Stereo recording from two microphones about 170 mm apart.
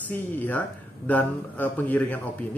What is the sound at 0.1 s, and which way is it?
Speech, 10° left (ahead or behind).